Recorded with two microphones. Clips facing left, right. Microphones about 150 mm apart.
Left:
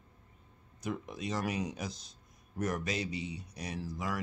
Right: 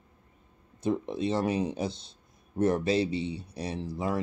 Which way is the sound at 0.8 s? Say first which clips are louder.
Right 9 dB; 30° right (ahead or behind).